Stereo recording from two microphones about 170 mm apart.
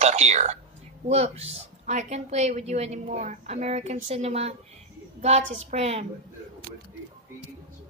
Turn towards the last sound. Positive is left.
turn(degrees=-40)  # may be behind; listen again after turning